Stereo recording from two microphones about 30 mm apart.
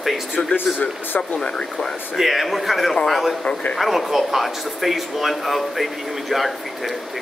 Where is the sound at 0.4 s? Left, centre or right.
Left.